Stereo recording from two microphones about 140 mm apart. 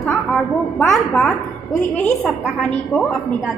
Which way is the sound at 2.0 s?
Centre (ahead or behind).